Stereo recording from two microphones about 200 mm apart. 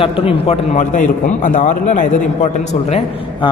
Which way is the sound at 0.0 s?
25° left (ahead or behind).